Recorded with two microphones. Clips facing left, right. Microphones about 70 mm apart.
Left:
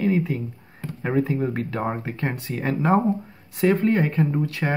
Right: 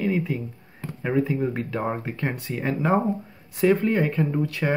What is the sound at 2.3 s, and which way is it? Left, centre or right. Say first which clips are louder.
Speech: left 1 dB; left.